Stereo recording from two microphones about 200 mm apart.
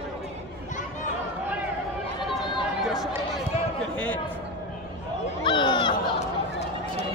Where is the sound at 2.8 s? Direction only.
Centre (ahead or behind).